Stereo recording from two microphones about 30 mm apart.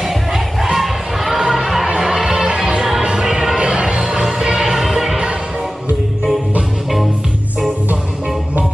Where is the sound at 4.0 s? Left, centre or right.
Centre.